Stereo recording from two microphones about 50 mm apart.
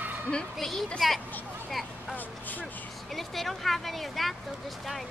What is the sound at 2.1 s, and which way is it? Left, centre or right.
Speech, left.